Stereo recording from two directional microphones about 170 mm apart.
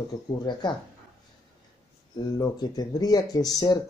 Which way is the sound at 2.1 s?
20° left (ahead or behind).